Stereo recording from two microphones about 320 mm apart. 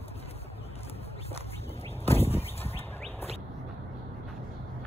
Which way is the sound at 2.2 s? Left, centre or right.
Centre.